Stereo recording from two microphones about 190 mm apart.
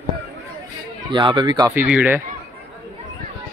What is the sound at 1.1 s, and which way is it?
Speech, 25° right (ahead or behind).